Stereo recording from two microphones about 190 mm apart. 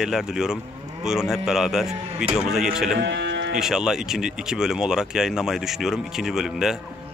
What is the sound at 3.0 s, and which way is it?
Livestock, 70° right (ahead or behind).